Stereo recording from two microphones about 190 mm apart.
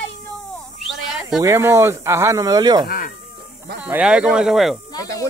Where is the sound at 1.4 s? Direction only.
15° right (ahead or behind).